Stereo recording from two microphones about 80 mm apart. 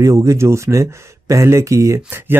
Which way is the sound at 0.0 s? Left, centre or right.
Right.